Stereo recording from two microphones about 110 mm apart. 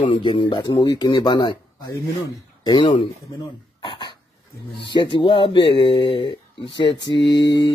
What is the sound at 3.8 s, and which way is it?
Cough, 45° left (ahead or behind).